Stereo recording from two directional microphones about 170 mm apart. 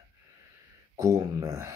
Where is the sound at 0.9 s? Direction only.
20° right (ahead or behind).